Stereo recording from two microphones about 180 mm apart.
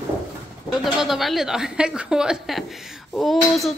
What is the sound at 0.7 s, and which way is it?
A woman's voice, centre (ahead or behind).